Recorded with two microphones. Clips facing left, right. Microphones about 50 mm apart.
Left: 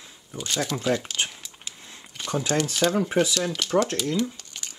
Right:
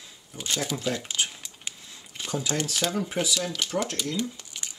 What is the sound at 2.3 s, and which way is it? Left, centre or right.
Speech, left.